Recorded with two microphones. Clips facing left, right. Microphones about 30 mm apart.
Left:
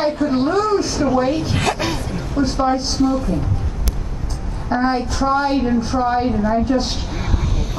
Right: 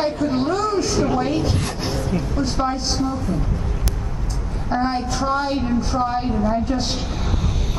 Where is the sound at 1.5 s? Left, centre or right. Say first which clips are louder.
Left 6 dB; left.